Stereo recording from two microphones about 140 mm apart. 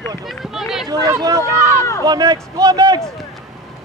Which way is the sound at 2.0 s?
25° right (ahead or behind).